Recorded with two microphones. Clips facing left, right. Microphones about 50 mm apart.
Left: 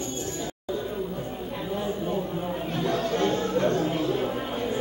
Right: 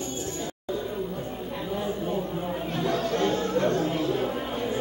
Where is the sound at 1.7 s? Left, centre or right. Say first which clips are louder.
Even; centre.